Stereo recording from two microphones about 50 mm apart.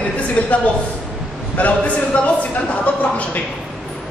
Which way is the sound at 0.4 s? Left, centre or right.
Left.